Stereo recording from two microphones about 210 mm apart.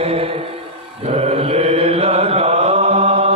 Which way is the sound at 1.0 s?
30° right (ahead or behind).